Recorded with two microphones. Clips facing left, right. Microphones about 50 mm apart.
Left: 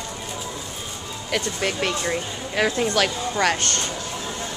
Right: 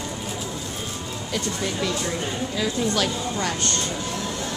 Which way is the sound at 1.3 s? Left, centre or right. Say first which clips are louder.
Left 3 dB; left.